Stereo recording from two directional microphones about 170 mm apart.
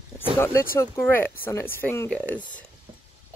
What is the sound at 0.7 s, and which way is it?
Speech, 15° left (ahead or behind).